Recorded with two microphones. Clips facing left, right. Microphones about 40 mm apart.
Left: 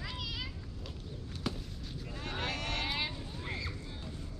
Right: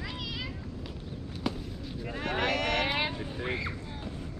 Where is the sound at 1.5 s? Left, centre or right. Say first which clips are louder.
Right 5 dB; centre.